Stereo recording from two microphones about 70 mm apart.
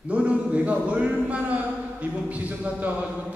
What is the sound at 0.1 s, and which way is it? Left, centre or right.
A man's voice, centre.